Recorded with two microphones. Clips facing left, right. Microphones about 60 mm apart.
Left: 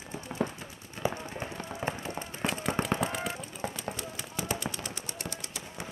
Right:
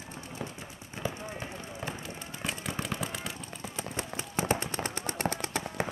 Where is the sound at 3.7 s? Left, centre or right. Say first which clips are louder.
Right 1 dB; right.